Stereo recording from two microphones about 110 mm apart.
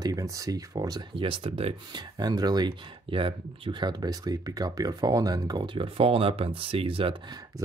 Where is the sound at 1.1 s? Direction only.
50° right (ahead or behind).